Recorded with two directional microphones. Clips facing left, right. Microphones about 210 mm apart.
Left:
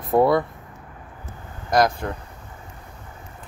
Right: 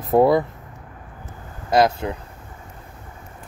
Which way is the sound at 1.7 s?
25° right (ahead or behind).